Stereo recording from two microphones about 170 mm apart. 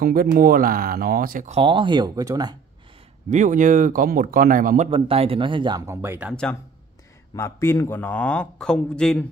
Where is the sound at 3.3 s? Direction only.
50° right (ahead or behind).